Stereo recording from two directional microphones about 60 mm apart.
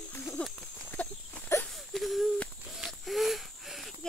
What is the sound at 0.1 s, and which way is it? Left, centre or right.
Horse, left.